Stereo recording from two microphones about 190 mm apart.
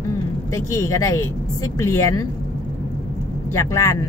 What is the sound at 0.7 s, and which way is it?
A woman's voice, 15° left (ahead or behind).